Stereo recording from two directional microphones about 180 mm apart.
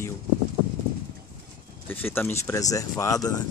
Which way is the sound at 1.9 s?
10° left (ahead or behind).